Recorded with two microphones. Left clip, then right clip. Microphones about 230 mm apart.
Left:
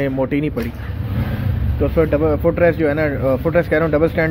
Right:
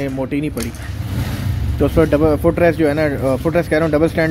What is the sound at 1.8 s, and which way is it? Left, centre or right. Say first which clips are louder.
Speech: right 2 dB; right.